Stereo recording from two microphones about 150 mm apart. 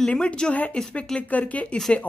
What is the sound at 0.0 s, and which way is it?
Speech, 10° left (ahead or behind).